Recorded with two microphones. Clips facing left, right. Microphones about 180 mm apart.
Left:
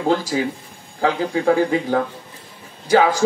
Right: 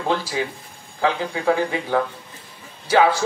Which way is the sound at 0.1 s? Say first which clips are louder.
Left 3 dB; 45° left (ahead or behind).